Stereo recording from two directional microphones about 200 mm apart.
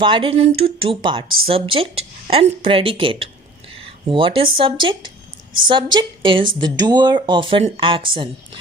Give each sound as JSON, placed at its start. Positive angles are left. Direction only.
{"t": 0.0, "sound": "speech", "side_deg": -25}